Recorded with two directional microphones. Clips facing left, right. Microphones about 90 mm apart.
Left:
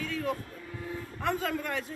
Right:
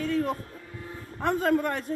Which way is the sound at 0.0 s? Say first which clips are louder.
Right 5 dB; 40° right (ahead or behind).